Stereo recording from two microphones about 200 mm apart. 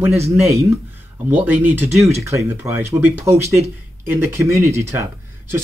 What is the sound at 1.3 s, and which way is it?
Speech, 10° right (ahead or behind).